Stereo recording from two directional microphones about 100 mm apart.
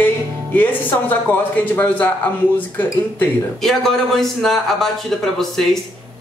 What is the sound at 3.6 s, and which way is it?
A man's voice, 5° left (ahead or behind).